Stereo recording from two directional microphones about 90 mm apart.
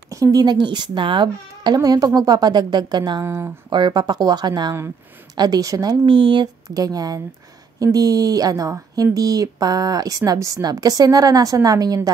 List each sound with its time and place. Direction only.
0.1 s speech: 40° right (ahead or behind)
0.9 s a woman's voice: 65° right (ahead or behind); by 3.2 s 50° right (ahead or behind)
3.2 s speech: 30° right (ahead or behind)
3.7 s a woman's voice: 55° right (ahead or behind)
6.0 s speech: 75° right (ahead or behind)
6.4 s a woman's voice: 45° right (ahead or behind)